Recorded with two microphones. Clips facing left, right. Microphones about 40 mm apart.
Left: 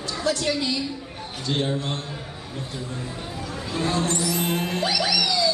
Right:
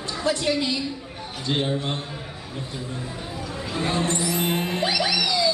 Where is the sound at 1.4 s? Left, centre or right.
Centre.